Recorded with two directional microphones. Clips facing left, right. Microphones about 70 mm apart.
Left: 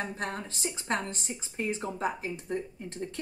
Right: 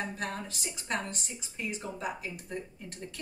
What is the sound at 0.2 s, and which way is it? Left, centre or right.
A woman's voice, left.